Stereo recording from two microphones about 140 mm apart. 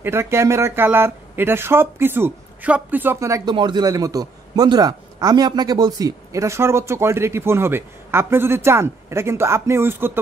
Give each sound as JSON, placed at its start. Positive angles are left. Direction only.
{"t": 0.0, "sound": "a man's voice", "side_deg": -20}